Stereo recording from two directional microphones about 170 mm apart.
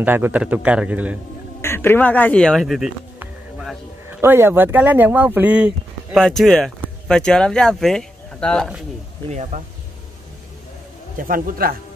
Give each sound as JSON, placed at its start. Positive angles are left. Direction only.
{"t": 0.0, "sound": "speech", "side_deg": -10}
{"t": 1.6, "sound": "speech", "side_deg": 15}
{"t": 4.1, "sound": "speech", "side_deg": -15}
{"t": 6.1, "sound": "speech", "side_deg": 0}
{"t": 9.3, "sound": "speech", "side_deg": -45}
{"t": 11.1, "sound": "a man's voice", "side_deg": -55}